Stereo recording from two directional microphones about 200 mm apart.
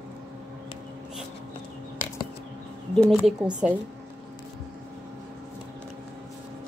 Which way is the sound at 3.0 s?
Centre (ahead or behind).